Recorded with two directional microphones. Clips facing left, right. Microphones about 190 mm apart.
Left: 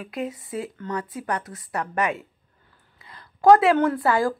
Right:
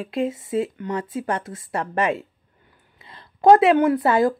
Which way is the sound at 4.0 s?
20° right (ahead or behind).